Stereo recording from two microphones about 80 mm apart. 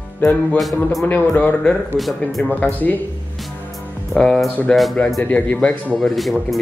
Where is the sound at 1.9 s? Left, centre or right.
Centre.